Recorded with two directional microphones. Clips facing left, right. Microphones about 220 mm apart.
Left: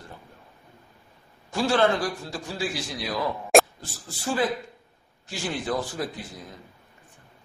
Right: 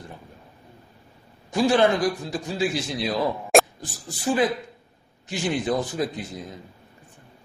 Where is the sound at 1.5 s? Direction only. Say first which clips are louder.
Right 3 dB; 15° right (ahead or behind).